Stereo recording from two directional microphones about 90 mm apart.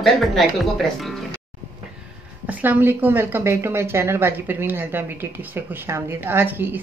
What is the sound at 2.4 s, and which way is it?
A woman's voice, 20° right (ahead or behind).